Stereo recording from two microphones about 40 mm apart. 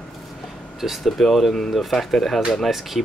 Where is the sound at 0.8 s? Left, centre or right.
Centre.